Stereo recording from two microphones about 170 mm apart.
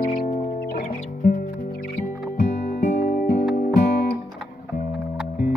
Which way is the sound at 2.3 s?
45° left (ahead or behind).